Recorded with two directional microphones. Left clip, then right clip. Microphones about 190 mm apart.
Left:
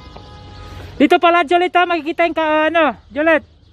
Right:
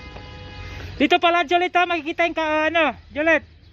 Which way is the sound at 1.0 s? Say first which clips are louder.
Left 5 dB; 60° left (ahead or behind).